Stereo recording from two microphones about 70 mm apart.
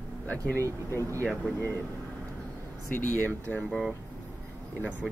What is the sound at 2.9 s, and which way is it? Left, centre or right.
Speech, left.